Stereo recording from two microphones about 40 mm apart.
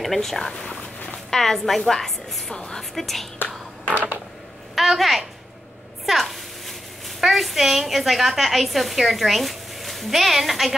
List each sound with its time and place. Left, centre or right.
0.0 s a woman's voice: centre
4.7 s a woman's voice: centre
6.0 s a sound: centre
7.1 s a woman's voice: centre